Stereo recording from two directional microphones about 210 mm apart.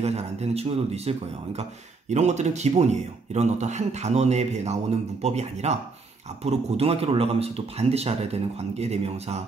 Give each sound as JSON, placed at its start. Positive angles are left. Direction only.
{"t": 0.0, "sound": "speech", "side_deg": -30}